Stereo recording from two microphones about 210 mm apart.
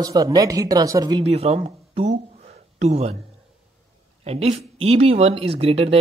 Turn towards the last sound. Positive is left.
turn(degrees=-30)  # may be behind; listen again after turning